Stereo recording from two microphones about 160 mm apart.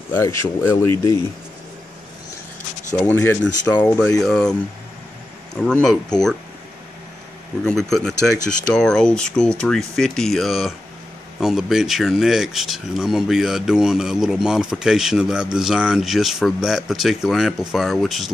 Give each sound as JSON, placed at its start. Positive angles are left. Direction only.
{"t": 0.1, "sound": "speech", "side_deg": 15}
{"t": 3.0, "sound": "speech", "side_deg": 15}
{"t": 4.2, "sound": "speech", "side_deg": 5}
{"t": 5.6, "sound": "speech", "side_deg": 5}
{"t": 7.6, "sound": "speech", "side_deg": 5}